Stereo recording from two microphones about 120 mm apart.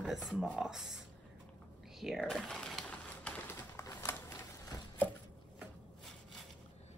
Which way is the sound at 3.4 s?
25° left (ahead or behind).